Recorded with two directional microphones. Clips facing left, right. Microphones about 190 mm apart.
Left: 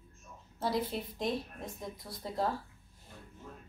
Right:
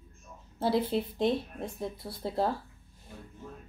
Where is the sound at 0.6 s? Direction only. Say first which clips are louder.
Right 6 dB; 30° right (ahead or behind).